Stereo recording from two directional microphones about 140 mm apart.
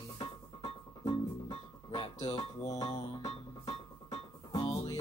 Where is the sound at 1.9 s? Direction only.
40° left (ahead or behind).